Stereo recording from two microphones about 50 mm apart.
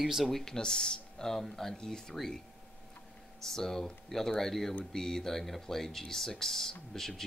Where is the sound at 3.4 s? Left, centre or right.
Centre.